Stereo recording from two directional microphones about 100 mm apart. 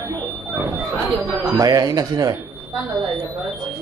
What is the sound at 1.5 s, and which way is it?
Speech, 40° right (ahead or behind).